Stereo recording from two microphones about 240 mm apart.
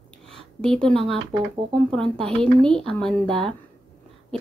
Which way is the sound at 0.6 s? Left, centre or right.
Centre.